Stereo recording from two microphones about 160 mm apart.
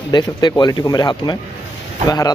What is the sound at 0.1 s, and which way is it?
Speech, 30° left (ahead or behind).